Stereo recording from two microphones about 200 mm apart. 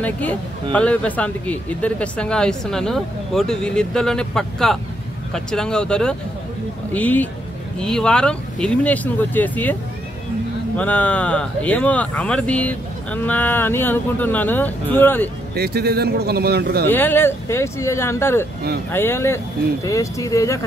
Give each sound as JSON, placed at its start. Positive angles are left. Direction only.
{"t": 0.0, "sound": "speech", "side_deg": 10}
{"t": 10.8, "sound": "speech", "side_deg": 10}
{"t": 15.5, "sound": "a man's voice", "side_deg": -50}
{"t": 16.8, "sound": "speech", "side_deg": 10}